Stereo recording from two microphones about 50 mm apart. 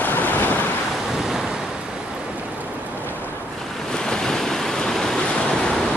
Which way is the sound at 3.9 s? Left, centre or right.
Centre.